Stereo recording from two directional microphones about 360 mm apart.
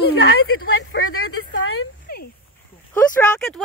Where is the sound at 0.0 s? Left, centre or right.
Left.